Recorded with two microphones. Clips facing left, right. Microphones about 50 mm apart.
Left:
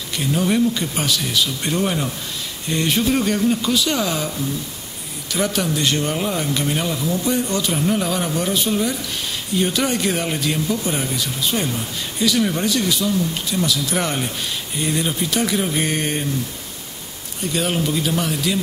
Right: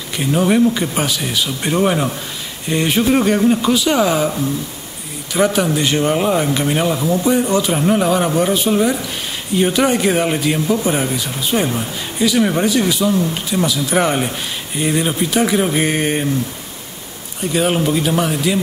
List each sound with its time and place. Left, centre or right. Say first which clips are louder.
0.2 s speech: right 5 dB; right
5.3 s speech: right 6 dB; centre
17.5 s speech: right 5 dB; centre